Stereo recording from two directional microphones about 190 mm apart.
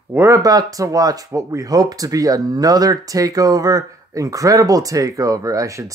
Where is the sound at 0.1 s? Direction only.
15° right (ahead or behind).